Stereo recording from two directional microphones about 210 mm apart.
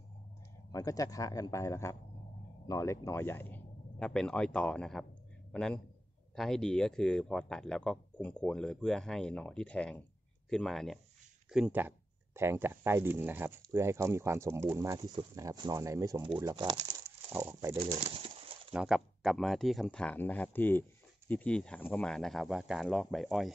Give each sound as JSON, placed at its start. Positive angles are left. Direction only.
{"t": 0.7, "sound": "a man's voice", "side_deg": 15}
{"t": 17.7, "sound": "speech", "side_deg": -25}
{"t": 18.7, "sound": "speech", "side_deg": -5}